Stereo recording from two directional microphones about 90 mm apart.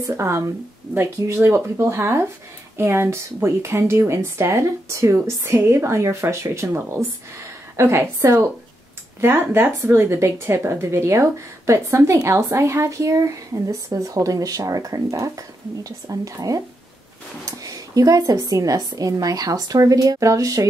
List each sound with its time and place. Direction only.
0.1 s speech: 30° right (ahead or behind)